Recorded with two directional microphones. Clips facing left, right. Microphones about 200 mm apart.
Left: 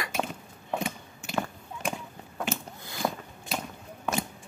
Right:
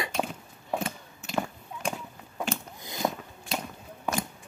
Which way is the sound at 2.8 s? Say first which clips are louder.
Right 2 dB; 20° right (ahead or behind).